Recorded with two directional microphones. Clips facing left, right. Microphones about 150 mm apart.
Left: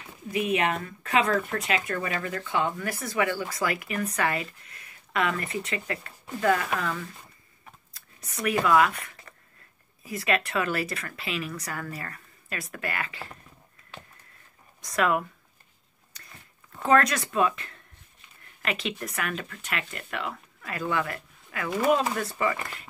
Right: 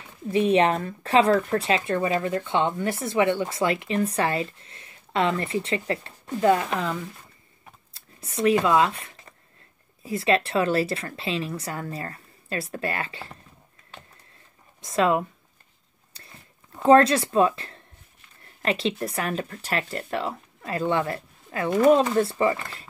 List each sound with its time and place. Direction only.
0.3 s speech: 30° right (ahead or behind)
7.9 s scissors: 25° right (ahead or behind)
10.0 s speech: 25° right (ahead or behind)
14.8 s speech: 25° right (ahead or behind)
16.1 s a sound: 30° right (ahead or behind)
16.8 s speech: 30° right (ahead or behind)